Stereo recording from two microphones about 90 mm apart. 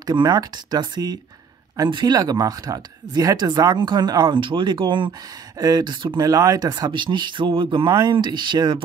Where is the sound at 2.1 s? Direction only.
45° right (ahead or behind); by 5.1 s 65° right (ahead or behind).